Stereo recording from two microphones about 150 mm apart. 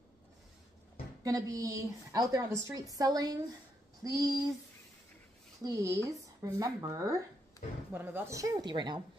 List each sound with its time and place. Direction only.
1.2 s a woman's voice: 25° right (ahead or behind)
4.0 s a sound: 25° right (ahead or behind)
5.6 s a woman's voice: 20° right (ahead or behind)
7.9 s a woman's voice: 15° right (ahead or behind); by 9.0 s 30° right (ahead or behind)